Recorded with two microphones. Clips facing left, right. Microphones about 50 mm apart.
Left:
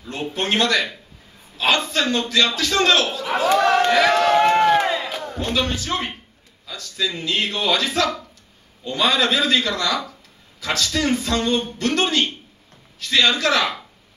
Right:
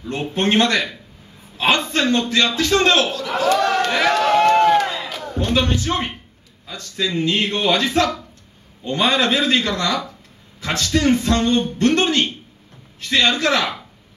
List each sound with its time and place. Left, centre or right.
0.3 s a man's voice: right
3.1 s speech: centre
4.4 s run: centre
4.7 s crowd: centre
5.4 s a man's voice: right